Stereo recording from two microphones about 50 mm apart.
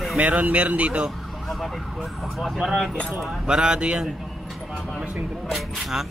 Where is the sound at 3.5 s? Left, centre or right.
Centre.